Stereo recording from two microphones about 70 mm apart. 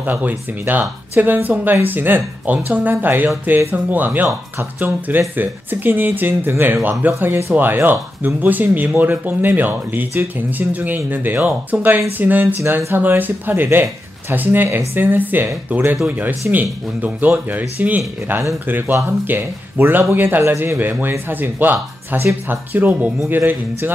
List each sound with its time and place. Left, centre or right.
0.0 s speech: right
4.3 s speech: right
4.8 s speech: right
22.9 s speech: centre
23.3 s speech: right